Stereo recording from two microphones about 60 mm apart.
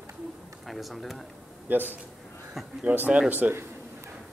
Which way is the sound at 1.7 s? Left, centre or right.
Right.